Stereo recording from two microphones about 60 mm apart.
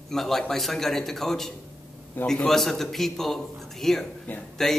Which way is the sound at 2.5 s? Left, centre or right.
Centre.